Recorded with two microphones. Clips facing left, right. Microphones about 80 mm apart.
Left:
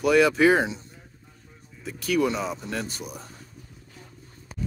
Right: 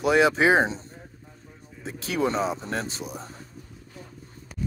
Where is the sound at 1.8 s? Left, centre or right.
Right.